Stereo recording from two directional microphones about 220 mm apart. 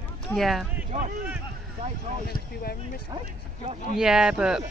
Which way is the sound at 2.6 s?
45° left (ahead or behind).